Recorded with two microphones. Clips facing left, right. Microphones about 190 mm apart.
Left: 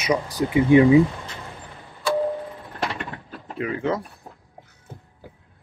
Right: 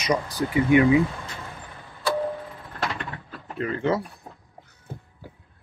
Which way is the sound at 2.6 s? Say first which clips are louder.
Left 2 dB; 15° left (ahead or behind).